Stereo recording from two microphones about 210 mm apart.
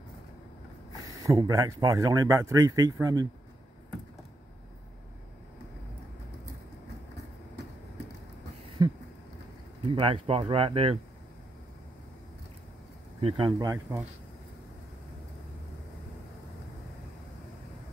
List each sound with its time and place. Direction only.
1.0 s speech: 15° right (ahead or behind)
8.8 s a sound: 15° right (ahead or behind)
9.9 s speech: 25° right (ahead or behind)
13.2 s speech: 20° right (ahead or behind)